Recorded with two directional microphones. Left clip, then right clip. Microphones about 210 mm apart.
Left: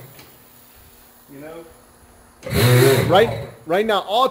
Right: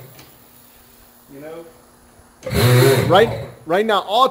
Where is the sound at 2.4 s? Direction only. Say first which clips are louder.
Right 1 dB; 45° left (ahead or behind).